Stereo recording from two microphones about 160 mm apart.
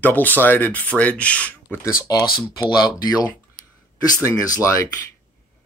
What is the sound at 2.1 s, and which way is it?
Speech, 25° left (ahead or behind).